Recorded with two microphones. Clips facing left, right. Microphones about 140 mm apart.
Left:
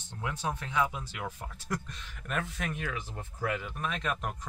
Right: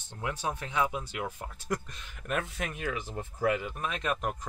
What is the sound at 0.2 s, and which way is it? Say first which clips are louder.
Speech: right 1 dB; 10° right (ahead or behind).